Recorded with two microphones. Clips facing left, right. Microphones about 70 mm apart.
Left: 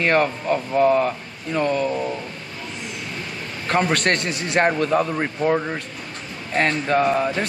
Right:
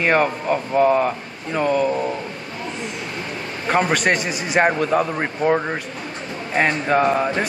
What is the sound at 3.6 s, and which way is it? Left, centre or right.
Speech, centre.